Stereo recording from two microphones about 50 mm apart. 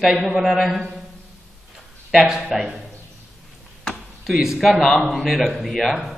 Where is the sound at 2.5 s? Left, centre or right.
Centre.